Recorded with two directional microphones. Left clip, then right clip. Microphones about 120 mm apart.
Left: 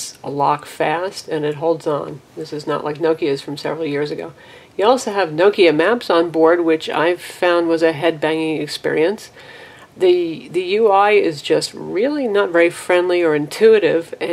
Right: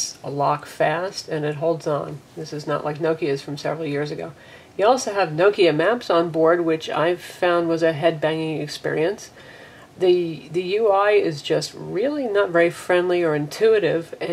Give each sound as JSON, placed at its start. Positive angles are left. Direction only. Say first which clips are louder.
{"t": 0.2, "sound": "speech", "louder": "left 5 dB", "side_deg": 25}